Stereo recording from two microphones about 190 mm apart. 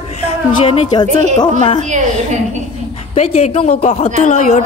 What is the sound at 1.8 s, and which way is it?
Speech, 40° right (ahead or behind).